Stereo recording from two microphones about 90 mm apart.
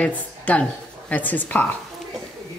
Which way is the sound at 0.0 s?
15° left (ahead or behind).